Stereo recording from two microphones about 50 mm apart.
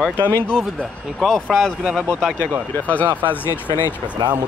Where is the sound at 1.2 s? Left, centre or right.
Centre.